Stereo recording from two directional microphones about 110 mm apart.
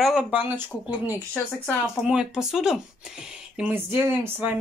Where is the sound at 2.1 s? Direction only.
5° right (ahead or behind).